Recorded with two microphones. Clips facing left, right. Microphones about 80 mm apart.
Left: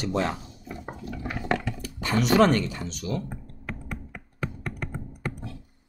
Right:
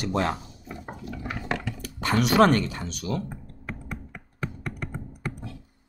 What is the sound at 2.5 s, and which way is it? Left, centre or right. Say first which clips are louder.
Speech: right 1 dB; right.